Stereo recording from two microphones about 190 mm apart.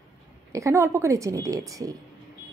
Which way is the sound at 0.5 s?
15° right (ahead or behind).